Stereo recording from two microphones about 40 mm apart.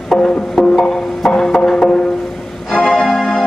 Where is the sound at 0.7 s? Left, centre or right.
Centre.